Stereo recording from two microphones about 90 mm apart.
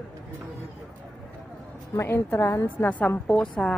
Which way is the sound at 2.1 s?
25° left (ahead or behind).